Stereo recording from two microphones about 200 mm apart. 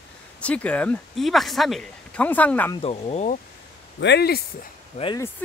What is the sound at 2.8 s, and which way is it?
Speech, 30° left (ahead or behind).